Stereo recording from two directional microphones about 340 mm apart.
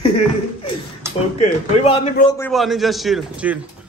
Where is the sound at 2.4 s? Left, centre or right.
Centre.